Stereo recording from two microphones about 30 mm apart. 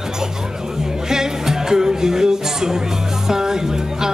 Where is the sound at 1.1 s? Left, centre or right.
Centre.